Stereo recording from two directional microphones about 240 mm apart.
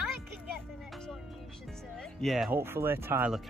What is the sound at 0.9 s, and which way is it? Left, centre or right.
Music, centre.